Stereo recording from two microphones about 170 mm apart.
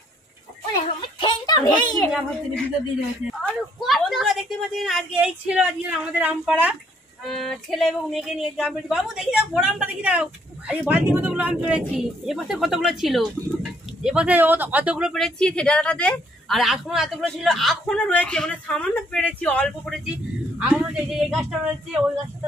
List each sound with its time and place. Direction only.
0.7 s a sound: 25° left (ahead or behind)
3.3 s speech: centre (ahead or behind)
20.5 s speech: 5° right (ahead or behind)